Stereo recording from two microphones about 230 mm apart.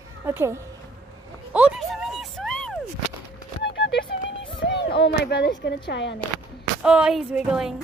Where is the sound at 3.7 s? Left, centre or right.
Left.